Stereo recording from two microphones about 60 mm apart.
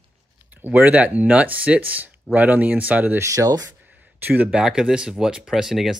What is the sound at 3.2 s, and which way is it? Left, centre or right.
Speech, right.